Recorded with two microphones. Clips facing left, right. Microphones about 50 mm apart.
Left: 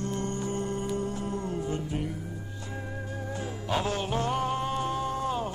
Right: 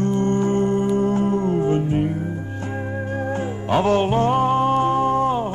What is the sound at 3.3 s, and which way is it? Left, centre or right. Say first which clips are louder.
Music: right 9 dB; right.